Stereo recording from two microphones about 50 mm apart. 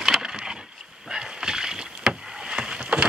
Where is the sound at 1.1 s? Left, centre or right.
Centre.